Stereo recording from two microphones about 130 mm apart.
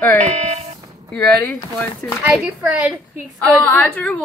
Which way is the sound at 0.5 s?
55° right (ahead or behind).